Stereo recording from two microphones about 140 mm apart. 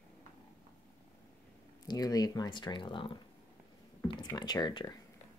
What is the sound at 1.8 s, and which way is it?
Speech, 25° left (ahead or behind).